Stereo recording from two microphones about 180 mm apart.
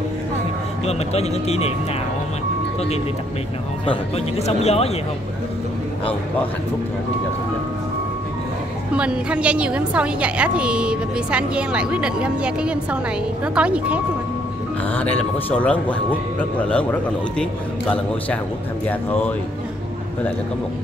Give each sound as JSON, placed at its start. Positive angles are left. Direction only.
{"t": 0.8, "sound": "speech", "side_deg": 35}
{"t": 3.8, "sound": "speech", "side_deg": 30}
{"t": 8.9, "sound": "a woman's voice", "side_deg": -5}
{"t": 15.5, "sound": "speech", "side_deg": 10}